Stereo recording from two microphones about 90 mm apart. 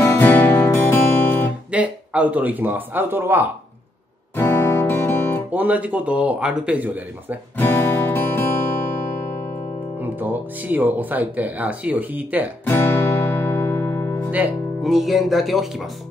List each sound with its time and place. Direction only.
0.0 s music: 30° left (ahead or behind)
0.3 s music: 20° left (ahead or behind)
1.7 s speech: 15° right (ahead or behind)
4.4 s music: 30° left (ahead or behind)
5.5 s a man's voice: 15° right (ahead or behind)
7.5 s music: 25° left (ahead or behind)
9.9 s speech: 20° right (ahead or behind)
12.6 s music: 25° left (ahead or behind)
14.8 s speech: centre (ahead or behind)